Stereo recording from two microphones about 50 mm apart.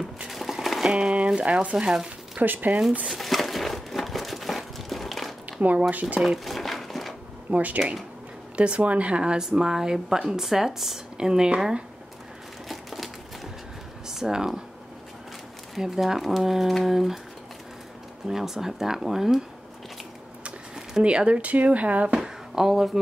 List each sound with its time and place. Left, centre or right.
0.3 s a sound: centre
0.9 s speech: right
2.4 s speech: right
3.1 s crumpling: centre
5.6 s speech: right
6.2 s crumpling: centre
7.5 s speech: right
12.6 s crumpling: centre
14.0 s speech: centre
15.8 s speech: centre
18.3 s speech: centre
21.0 s speech: right
22.2 s a sound: centre